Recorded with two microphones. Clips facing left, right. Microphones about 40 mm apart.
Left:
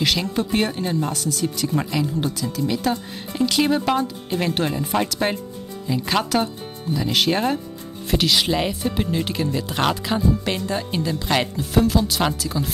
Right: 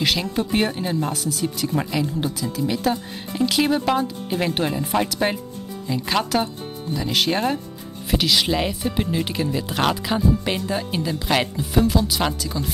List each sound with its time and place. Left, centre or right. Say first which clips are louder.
0.0 s speech: even; centre